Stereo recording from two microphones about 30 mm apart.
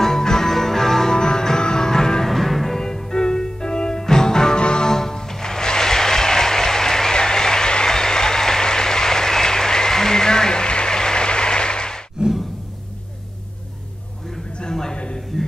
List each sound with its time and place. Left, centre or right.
0.0 s music: centre
1.1 s music: left
2.2 s music: centre; by 4.6 s left
4.6 s music: left
4.8 s music: centre
12.2 s a sound: right
14.6 s a sound: centre
15.3 s music: centre